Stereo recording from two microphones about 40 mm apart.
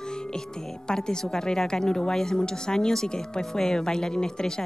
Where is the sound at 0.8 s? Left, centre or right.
Centre.